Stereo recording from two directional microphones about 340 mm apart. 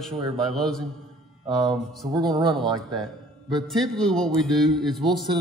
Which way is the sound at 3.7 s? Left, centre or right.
Centre.